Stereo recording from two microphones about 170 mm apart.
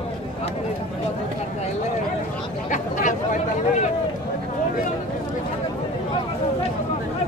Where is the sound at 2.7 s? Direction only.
50° left (ahead or behind).